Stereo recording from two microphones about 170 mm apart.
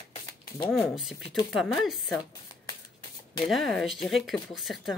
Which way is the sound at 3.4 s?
Centre (ahead or behind).